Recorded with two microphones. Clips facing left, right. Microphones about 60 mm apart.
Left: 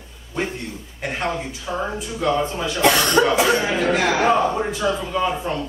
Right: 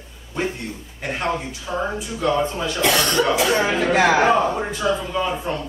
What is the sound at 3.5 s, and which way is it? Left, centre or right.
Speech, right.